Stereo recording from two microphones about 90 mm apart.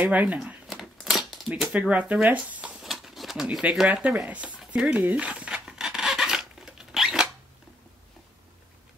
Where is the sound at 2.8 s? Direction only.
Centre (ahead or behind).